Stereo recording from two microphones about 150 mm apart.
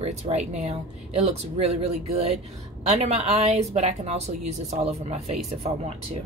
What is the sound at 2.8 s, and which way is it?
A woman's voice, 50° right (ahead or behind).